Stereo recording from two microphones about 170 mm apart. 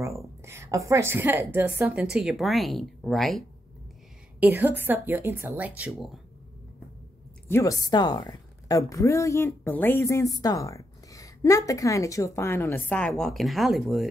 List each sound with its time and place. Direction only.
0.4 s a woman's voice: 15° right (ahead or behind); by 3.4 s centre (ahead or behind)
4.4 s a woman's voice: 10° right (ahead or behind)
7.4 s a woman's voice: 15° left (ahead or behind); by 14.0 s centre (ahead or behind)